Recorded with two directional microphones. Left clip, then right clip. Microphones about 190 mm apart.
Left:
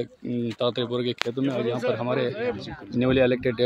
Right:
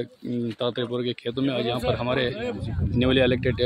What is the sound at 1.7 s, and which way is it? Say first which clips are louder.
Speech: even; centre (ahead or behind).